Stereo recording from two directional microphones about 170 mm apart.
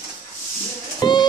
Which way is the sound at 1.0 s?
25° left (ahead or behind).